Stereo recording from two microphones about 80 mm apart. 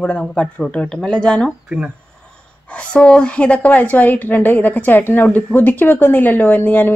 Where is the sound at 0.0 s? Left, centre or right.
Centre.